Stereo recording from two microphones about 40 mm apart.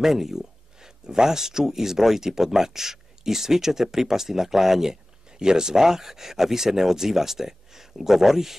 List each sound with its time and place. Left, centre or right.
0.0 s speech: centre